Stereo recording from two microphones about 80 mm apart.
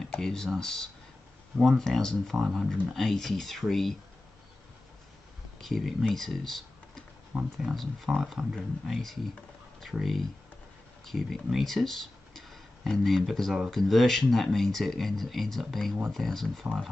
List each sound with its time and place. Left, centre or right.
0.2 s speech: centre
5.6 s speech: centre
7.3 s speech: centre
7.7 s speech: centre